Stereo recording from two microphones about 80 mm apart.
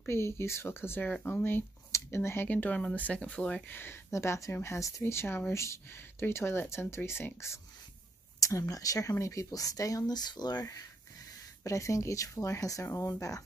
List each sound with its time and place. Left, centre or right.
0.0 s speech: left; by 3.6 s centre
3.6 s speech: left